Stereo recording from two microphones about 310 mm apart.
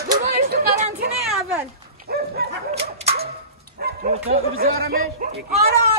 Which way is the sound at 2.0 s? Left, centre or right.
Right.